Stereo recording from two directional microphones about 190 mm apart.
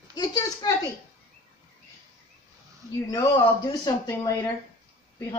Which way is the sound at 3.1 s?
20° left (ahead or behind).